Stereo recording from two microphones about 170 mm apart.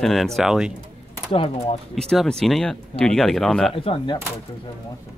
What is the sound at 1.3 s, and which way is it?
Speech, 35° left (ahead or behind).